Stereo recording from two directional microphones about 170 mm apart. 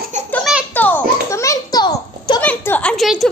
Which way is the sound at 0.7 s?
10° left (ahead or behind).